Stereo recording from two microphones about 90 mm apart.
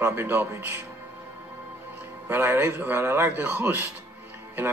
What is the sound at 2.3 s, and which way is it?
Speech, 25° right (ahead or behind).